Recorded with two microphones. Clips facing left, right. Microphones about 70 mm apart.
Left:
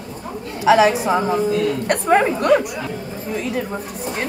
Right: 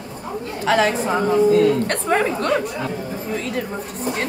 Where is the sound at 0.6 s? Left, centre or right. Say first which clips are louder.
Left 4 dB; centre.